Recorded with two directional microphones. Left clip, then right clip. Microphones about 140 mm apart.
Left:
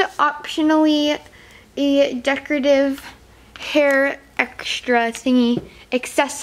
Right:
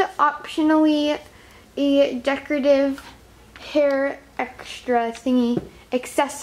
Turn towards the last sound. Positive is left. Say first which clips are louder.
# left 2 dB
turn(degrees=30)  # may be behind; listen again after turning